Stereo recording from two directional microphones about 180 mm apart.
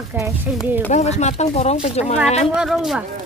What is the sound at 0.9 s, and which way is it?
Speech, 40° left (ahead or behind).